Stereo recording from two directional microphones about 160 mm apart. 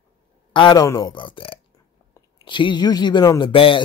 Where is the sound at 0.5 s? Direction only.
25° left (ahead or behind).